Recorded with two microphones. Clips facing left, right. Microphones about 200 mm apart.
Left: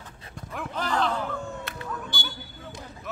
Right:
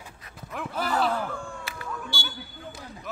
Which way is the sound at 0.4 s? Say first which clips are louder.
Right 1 dB; centre (ahead or behind).